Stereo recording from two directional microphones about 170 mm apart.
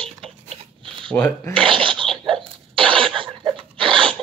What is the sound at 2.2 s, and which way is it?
Sneeze, 30° right (ahead or behind).